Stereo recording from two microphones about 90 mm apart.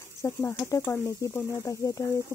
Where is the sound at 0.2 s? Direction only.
30° left (ahead or behind).